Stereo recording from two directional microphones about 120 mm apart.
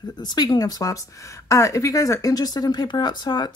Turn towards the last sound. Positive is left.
turn(degrees=35)  # may be behind; listen again after turning